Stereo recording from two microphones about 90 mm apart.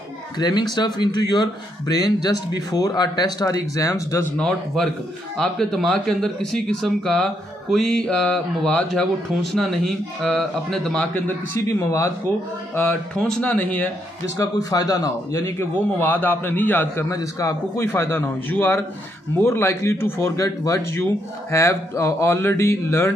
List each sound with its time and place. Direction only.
0.4 s speech: 50° left (ahead or behind); by 4.3 s 35° left (ahead or behind)
4.4 s speech: 5° left (ahead or behind)
12.7 s speech: 15° left (ahead or behind)
14.3 s speech: 40° left (ahead or behind)
16.0 s a man's voice: 20° left (ahead or behind)
17.1 s a man's voice: 40° left (ahead or behind)